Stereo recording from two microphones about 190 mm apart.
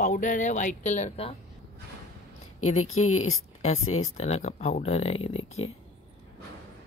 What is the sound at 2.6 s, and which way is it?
Speech, 90° left.